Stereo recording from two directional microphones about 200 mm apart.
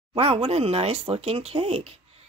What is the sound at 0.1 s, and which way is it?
Speech, 30° right (ahead or behind).